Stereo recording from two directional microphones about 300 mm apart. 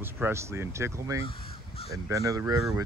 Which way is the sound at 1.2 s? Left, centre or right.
Centre.